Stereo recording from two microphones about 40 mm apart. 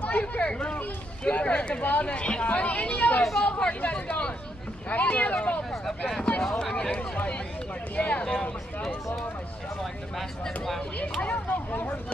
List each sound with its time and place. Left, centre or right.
0.1 s a sound: left
1.2 s speech: left
1.8 s speech: left
4.9 s speech: left
5.7 s speech: centre
7.9 s speech: left
8.3 s speech: centre
10.4 s speech: centre
11.2 s speech: left